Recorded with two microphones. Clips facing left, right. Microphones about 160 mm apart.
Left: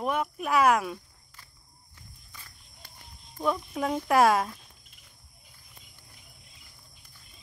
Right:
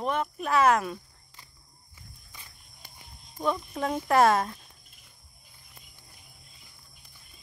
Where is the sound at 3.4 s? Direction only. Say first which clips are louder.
Even; 5° left (ahead or behind).